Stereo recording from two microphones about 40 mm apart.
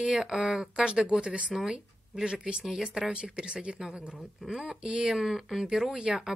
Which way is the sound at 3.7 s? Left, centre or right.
Centre.